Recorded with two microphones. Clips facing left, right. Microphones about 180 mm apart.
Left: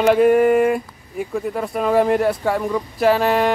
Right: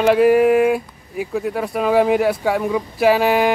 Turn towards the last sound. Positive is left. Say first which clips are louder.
# right 1 dB
turn(degrees=-5)  # may be behind; listen again after turning